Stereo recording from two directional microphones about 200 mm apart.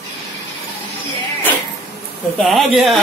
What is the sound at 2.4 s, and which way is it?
Speech, centre (ahead or behind).